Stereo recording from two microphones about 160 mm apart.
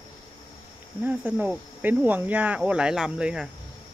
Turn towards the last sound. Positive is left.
turn(degrees=-5)  # may be behind; listen again after turning